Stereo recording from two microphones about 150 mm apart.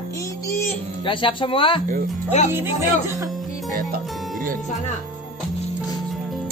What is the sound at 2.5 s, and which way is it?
Speech, 15° right (ahead or behind).